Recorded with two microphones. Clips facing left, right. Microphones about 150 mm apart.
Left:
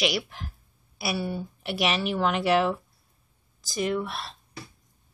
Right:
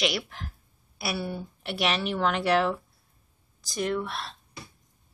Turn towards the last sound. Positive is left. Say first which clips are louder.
# left 1 dB
turn(degrees=5)  # may be behind; listen again after turning